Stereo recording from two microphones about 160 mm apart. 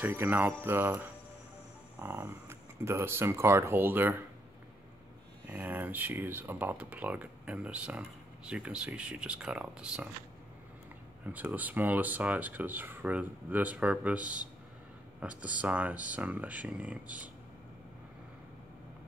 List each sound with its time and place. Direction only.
0.0 s speech: 15° right (ahead or behind)
5.5 s speech: 10° right (ahead or behind)
11.2 s speech: 10° right (ahead or behind)